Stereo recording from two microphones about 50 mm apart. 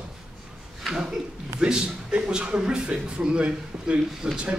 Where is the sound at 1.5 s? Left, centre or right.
Centre.